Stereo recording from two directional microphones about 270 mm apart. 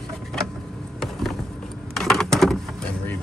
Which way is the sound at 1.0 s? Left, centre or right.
Centre.